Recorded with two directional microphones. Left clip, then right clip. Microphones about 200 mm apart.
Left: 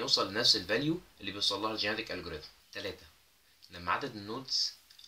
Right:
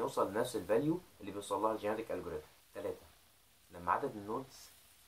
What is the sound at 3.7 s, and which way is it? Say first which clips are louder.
Speech: left 1 dB; 40° left (ahead or behind).